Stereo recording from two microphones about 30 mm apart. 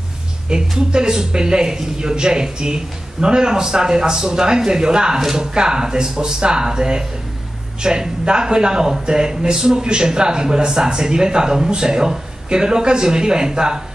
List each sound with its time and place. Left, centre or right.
0.5 s speech: right